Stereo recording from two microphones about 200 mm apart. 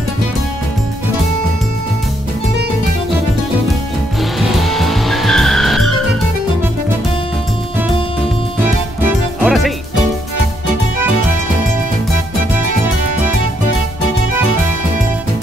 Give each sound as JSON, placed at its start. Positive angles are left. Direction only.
{"t": 4.4, "sound": "vehicle", "side_deg": 0}
{"t": 8.5, "sound": "music", "side_deg": -5}